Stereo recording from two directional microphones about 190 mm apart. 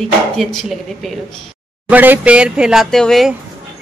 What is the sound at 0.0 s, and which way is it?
Speech, centre (ahead or behind).